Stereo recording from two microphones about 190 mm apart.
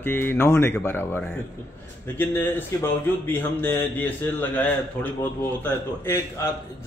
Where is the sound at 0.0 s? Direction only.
10° left (ahead or behind).